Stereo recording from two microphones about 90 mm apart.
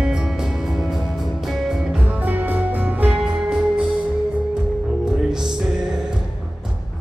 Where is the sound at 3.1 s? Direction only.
5° right (ahead or behind).